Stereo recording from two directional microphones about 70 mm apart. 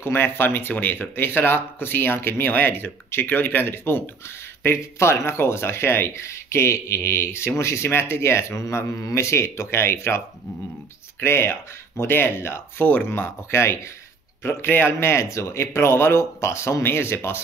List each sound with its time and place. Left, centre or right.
0.0 s speech: left